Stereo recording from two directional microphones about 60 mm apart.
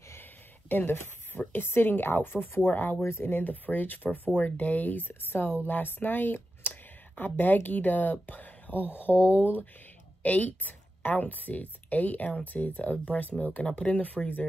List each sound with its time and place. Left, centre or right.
0.1 s a sound: left
1.5 s speech: left
3.0 s a woman's voice: left